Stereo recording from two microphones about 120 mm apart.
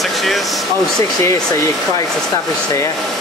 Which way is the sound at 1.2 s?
25° left (ahead or behind).